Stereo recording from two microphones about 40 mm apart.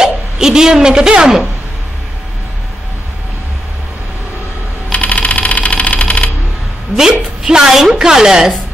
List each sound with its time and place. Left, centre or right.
0.0 s a sound: centre
4.9 s typewriter: left
7.0 s a woman's voice: centre